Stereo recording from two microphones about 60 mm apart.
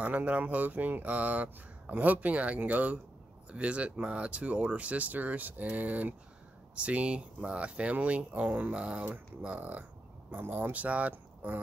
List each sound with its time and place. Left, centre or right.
0.0 s speech: right